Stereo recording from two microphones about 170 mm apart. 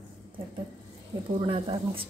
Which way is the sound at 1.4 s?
30° right (ahead or behind).